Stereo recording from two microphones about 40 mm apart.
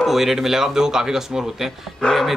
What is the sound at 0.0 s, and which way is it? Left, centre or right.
A man's voice, centre.